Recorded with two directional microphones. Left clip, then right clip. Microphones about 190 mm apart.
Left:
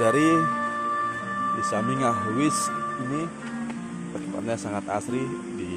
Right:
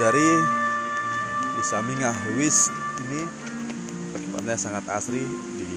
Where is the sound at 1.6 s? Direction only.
20° left (ahead or behind).